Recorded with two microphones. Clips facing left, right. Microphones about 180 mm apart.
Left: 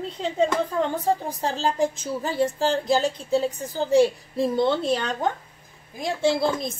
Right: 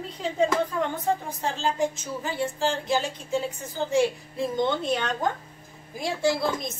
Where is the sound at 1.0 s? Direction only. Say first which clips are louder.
Left 3 dB; 35° left (ahead or behind).